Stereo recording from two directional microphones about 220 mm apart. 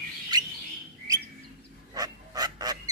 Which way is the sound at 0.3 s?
15° right (ahead or behind).